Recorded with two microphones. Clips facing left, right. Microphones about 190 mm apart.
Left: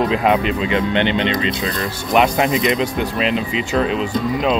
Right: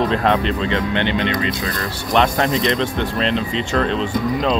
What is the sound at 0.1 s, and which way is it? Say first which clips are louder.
Speech: left 1 dB; 5° left (ahead or behind).